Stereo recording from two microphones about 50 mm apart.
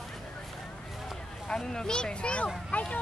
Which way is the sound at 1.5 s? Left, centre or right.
Centre.